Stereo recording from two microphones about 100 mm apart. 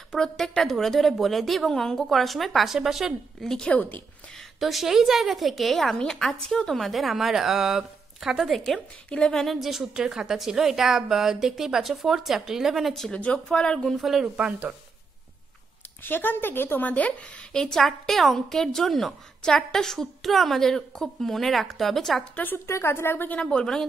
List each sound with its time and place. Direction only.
0.1 s a woman's voice: 5° left (ahead or behind)
4.4 s a woman's voice: centre (ahead or behind)
14.2 s speech: 10° right (ahead or behind)
16.0 s a woman's voice: 20° left (ahead or behind); by 22.2 s centre (ahead or behind)
22.3 s a woman's voice: 20° left (ahead or behind)